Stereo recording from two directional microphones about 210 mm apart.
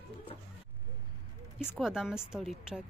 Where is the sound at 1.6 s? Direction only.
Centre (ahead or behind).